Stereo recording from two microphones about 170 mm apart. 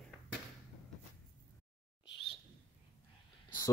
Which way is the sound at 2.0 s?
90° left.